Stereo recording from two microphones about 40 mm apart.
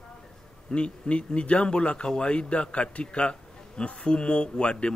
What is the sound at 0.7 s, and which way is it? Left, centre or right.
A man's voice, left.